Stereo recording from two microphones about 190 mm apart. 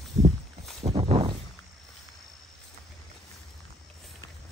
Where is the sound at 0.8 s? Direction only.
30° right (ahead or behind).